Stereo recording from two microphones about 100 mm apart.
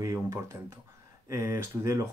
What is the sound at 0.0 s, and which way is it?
Speech, 30° right (ahead or behind).